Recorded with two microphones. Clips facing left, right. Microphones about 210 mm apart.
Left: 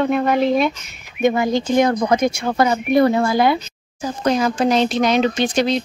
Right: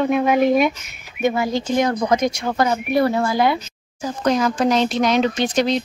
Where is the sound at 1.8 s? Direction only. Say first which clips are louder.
Left 2 dB; 55° left (ahead or behind).